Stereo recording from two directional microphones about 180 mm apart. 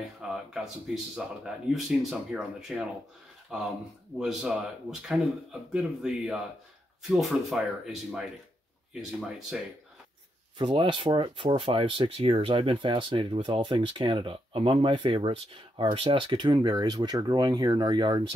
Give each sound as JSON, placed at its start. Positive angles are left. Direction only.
{"t": 0.0, "sound": "a sound", "side_deg": 0}
{"t": 1.1, "sound": "speech", "side_deg": -5}
{"t": 4.2, "sound": "speech", "side_deg": -5}
{"t": 9.5, "sound": "speech", "side_deg": -5}
{"t": 10.6, "sound": "speech", "side_deg": -25}